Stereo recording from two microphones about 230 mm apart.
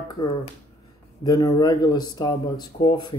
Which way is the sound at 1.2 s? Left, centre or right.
Centre.